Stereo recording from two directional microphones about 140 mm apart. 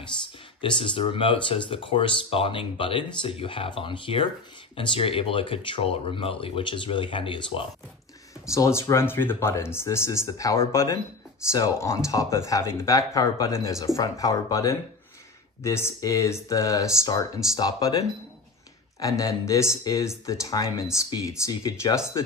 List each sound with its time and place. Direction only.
0.6 s speech: 35° left (ahead or behind)
8.5 s speech: 20° left (ahead or behind)